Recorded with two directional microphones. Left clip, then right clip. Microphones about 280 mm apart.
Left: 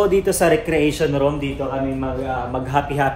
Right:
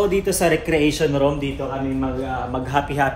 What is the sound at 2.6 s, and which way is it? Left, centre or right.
Speech, centre.